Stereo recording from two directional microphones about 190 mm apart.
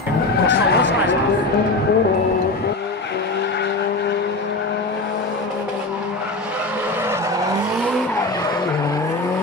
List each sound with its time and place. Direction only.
0.5 s chatter: 65° left (ahead or behind)